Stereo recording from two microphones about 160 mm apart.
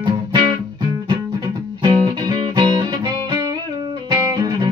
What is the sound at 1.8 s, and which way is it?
Music, 30° right (ahead or behind).